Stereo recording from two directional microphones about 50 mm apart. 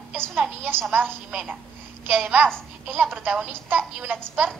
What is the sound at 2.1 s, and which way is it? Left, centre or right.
A woman's voice, right.